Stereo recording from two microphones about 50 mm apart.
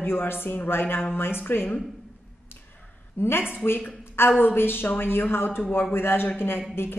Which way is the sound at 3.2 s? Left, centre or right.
Left.